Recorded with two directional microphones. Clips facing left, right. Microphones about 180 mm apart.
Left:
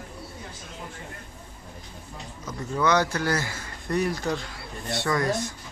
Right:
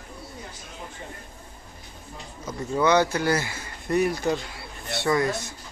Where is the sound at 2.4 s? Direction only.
25° right (ahead or behind).